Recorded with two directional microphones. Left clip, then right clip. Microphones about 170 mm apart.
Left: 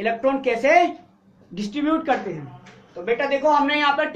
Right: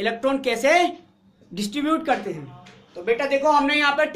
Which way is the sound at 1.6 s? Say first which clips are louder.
Even; 35° right (ahead or behind).